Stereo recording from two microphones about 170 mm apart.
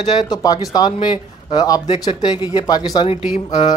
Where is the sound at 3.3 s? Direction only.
45° left (ahead or behind).